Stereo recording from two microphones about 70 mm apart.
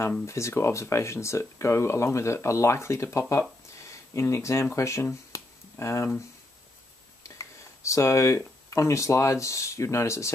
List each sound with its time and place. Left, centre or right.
0.2 s speech: left
5.3 s a sound: left
7.2 s speech: left